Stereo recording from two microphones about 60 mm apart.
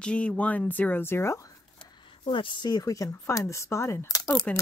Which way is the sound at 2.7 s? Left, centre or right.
Left.